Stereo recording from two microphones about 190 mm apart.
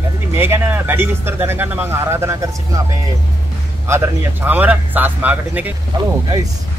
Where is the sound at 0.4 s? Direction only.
10° right (ahead or behind).